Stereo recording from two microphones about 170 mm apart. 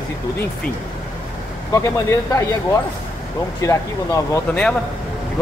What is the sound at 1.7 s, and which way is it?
Speech, 20° left (ahead or behind).